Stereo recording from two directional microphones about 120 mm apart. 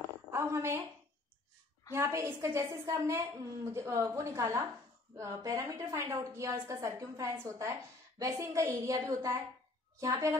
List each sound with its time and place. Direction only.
0.3 s a woman's voice: 20° right (ahead or behind)
2.0 s a woman's voice: 25° right (ahead or behind)